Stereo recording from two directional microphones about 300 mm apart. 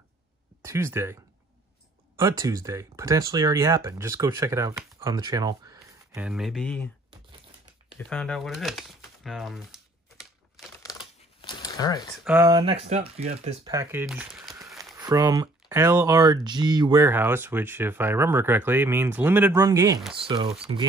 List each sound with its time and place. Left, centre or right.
0.7 s speech: centre
2.1 s speech: centre
8.0 s crumpling: centre
10.8 s a sound: centre
12.3 s speech: centre
13.7 s speech: centre
15.0 s speech: centre
20.2 s speech: centre